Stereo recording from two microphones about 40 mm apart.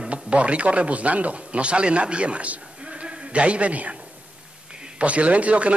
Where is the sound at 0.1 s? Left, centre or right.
Right.